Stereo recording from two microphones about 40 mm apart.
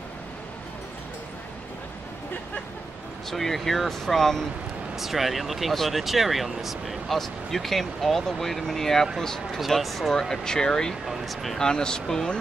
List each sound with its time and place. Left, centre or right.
3.3 s speech: centre
4.9 s speech: centre
7.2 s speech: centre
9.6 s speech: centre
10.2 s speech: centre
11.1 s speech: centre
11.5 s speech: centre